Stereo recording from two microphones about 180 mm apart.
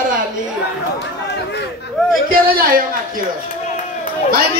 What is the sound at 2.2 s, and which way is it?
A man's voice, 50° right (ahead or behind).